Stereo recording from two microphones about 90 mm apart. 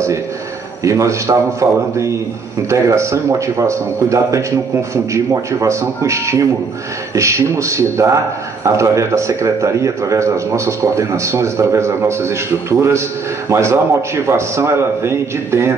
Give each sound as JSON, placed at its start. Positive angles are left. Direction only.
{"t": 0.8, "sound": "a man's voice", "side_deg": -35}